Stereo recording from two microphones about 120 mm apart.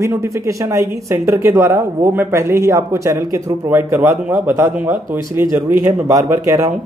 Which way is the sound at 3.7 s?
15° right (ahead or behind).